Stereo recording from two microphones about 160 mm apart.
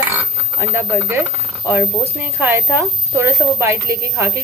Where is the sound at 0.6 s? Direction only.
15° right (ahead or behind).